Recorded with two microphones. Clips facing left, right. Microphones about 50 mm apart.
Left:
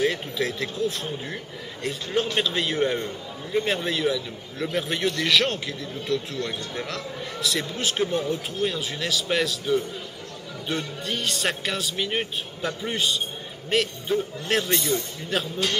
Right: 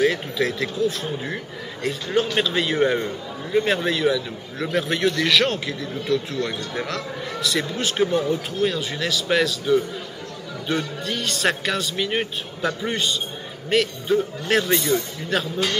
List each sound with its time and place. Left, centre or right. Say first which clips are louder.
0.0 s a man's voice: right 4 dB; centre
1.0 s a man's voice: right 4 dB; right
2.3 s a man's voice: right 3 dB; centre
2.9 s a man's voice: right 4 dB; centre
3.6 s a man's voice: right 3 dB; centre